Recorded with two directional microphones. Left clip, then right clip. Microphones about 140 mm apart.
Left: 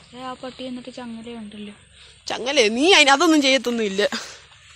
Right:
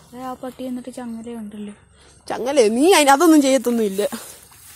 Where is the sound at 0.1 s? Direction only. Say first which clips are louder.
Right 2 dB; 60° right (ahead or behind).